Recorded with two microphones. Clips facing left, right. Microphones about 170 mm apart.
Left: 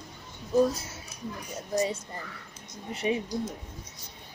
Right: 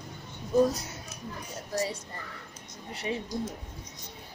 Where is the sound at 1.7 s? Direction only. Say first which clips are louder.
Left 4 dB; 20° left (ahead or behind).